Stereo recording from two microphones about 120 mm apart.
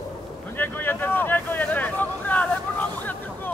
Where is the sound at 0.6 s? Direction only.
15° left (ahead or behind).